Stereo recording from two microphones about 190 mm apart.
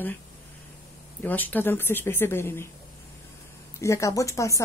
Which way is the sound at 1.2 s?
10° left (ahead or behind).